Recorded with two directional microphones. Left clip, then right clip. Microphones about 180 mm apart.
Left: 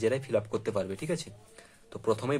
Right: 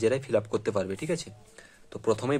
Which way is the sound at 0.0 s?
25° right (ahead or behind).